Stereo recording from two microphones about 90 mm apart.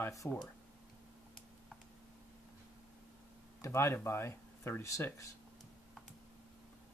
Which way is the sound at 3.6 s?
30° left (ahead or behind).